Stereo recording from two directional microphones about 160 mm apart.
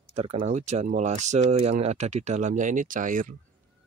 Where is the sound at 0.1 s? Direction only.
40° right (ahead or behind).